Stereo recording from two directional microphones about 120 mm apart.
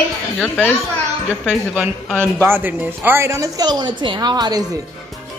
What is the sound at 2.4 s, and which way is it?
A woman's voice, 15° right (ahead or behind).